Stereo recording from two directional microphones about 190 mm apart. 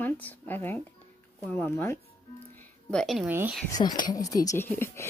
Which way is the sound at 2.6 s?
5° left (ahead or behind).